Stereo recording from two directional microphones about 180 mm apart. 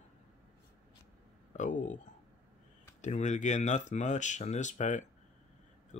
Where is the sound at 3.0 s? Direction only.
40° left (ahead or behind).